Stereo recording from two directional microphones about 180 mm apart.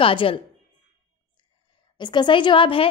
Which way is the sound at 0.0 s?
30° left (ahead or behind).